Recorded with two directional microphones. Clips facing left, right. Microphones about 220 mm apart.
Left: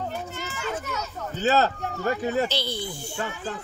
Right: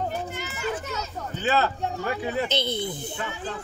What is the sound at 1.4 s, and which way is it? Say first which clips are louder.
Speech: left 2 dB; 40° left (ahead or behind).